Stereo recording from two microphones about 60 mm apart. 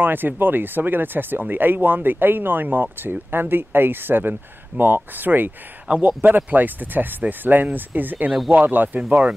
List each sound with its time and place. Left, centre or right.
0.0 s speech: right